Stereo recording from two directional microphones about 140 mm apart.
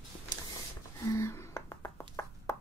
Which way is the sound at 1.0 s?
20° left (ahead or behind).